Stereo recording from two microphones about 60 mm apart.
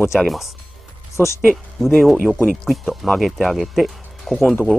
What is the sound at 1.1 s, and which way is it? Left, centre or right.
Speech, left.